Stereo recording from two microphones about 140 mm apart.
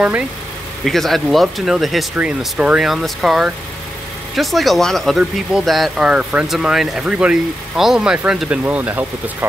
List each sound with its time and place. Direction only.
0.8 s speech: centre (ahead or behind)